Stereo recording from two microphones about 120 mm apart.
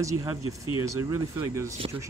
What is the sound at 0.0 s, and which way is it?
Speech, 30° right (ahead or behind).